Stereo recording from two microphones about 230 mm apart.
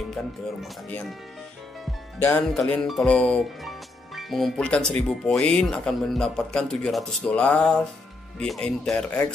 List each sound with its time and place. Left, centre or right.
0.1 s speech: centre
2.1 s speech: centre